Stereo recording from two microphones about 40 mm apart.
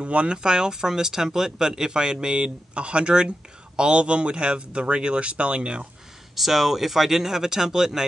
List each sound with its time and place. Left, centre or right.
0.0 s speech: right
6.3 s speech: centre